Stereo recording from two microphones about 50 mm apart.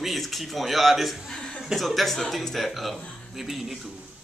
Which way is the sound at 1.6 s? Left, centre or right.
Centre.